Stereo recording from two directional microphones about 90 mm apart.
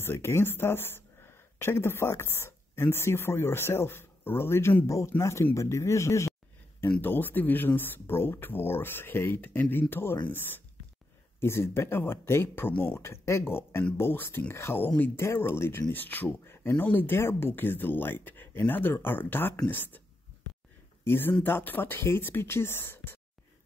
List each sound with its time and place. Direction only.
0.0 s speech: 25° left (ahead or behind)
6.9 s speech: 20° left (ahead or behind)
21.0 s speech: 25° left (ahead or behind)